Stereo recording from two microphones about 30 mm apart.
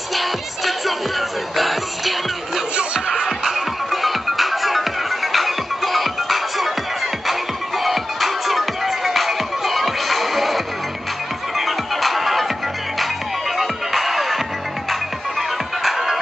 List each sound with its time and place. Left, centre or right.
0.1 s music: centre
2.7 s music: right
3.3 s music: centre
13.6 s music: centre